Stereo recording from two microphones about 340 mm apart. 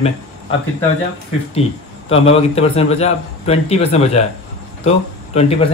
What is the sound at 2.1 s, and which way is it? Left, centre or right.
A man's voice, centre.